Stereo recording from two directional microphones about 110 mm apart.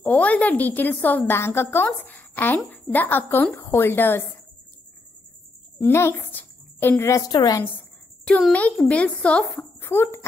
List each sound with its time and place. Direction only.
0.0 s a woman's voice: 15° left (ahead or behind)
5.8 s a woman's voice: 25° left (ahead or behind)
7.2 s a woman's voice: 35° left (ahead or behind)
8.3 s a woman's voice: 10° left (ahead or behind)
9.8 s a child's voice: 20° left (ahead or behind)